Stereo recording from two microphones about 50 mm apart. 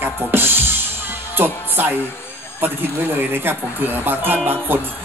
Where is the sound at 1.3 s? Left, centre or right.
Right.